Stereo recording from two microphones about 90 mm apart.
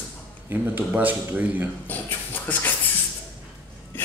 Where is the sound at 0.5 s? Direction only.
20° right (ahead or behind).